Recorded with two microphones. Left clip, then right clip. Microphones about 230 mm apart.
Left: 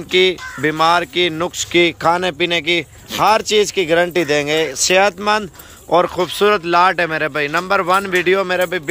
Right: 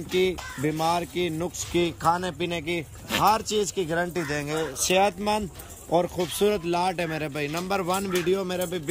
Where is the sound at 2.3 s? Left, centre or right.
Centre.